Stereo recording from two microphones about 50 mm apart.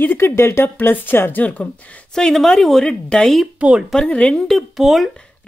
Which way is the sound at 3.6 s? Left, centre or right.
Centre.